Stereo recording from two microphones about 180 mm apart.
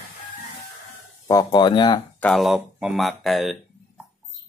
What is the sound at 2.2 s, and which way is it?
Speech, centre (ahead or behind).